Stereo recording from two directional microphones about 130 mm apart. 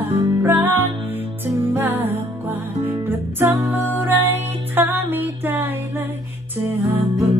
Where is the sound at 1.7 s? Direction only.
15° right (ahead or behind).